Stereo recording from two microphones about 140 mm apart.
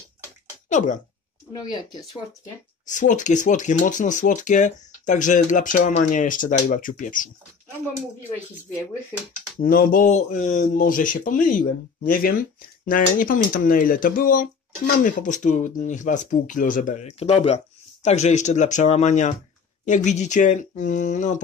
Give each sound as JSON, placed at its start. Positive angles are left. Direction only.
{"t": 0.7, "sound": "speech", "side_deg": 60}
{"t": 1.5, "sound": "speech", "side_deg": 30}
{"t": 2.9, "sound": "speech", "side_deg": 65}
{"t": 9.6, "sound": "speech", "side_deg": 90}
{"t": 15.0, "sound": "speech", "side_deg": 65}